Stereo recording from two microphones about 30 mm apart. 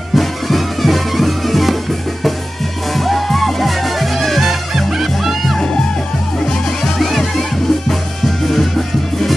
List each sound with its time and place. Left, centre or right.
0.1 s music: centre
6.4 s music: centre
7.0 s music: centre